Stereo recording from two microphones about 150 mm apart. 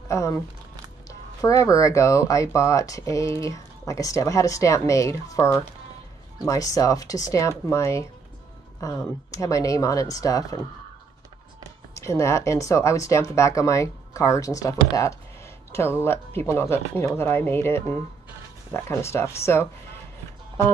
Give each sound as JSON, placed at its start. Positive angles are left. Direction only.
{"t": 0.1, "sound": "speech", "side_deg": 20}
{"t": 12.0, "sound": "speech", "side_deg": 20}